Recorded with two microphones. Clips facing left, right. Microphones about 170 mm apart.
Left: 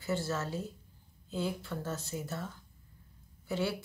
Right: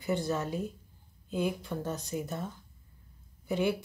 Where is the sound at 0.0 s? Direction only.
15° right (ahead or behind).